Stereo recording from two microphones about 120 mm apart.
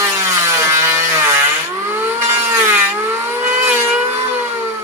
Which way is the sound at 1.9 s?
20° right (ahead or behind).